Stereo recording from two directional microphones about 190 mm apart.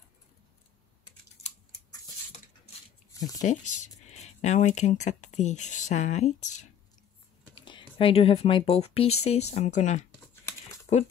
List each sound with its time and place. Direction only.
3.1 s a sound: 20° left (ahead or behind)
3.4 s speech: 40° left (ahead or behind)
7.5 s speech: 25° left (ahead or behind)